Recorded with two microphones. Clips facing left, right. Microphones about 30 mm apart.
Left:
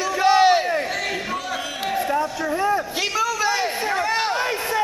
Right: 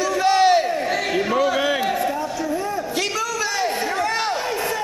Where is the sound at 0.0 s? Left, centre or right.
Centre.